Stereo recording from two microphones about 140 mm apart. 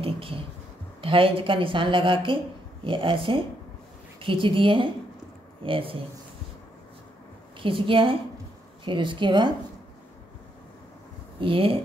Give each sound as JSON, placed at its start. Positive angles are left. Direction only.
{"t": 0.0, "sound": "a sound", "side_deg": -40}
{"t": 1.0, "sound": "a woman's voice", "side_deg": -40}
{"t": 7.6, "sound": "a woman's voice", "side_deg": -40}
{"t": 11.3, "sound": "a woman's voice", "side_deg": -40}